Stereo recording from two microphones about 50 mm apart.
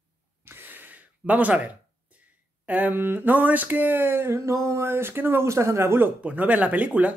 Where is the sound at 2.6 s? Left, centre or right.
Right.